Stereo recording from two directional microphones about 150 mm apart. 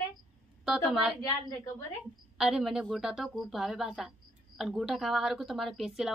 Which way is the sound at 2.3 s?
5° right (ahead or behind).